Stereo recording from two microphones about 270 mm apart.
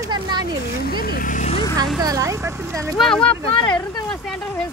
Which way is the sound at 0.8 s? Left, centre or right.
Left.